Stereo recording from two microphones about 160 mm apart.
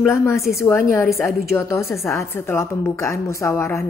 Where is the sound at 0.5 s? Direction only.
20° left (ahead or behind).